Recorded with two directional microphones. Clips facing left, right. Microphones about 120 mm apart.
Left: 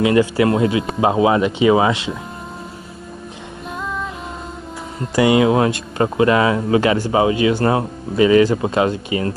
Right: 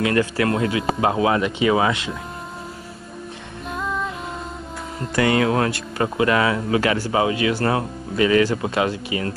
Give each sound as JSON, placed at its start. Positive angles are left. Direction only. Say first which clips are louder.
{"t": 0.0, "sound": "speech", "louder": "left 5 dB", "side_deg": 15}
{"t": 3.7, "sound": "music", "louder": "right 1 dB", "side_deg": 0}
{"t": 5.1, "sound": "speech", "louder": "left 5 dB", "side_deg": 15}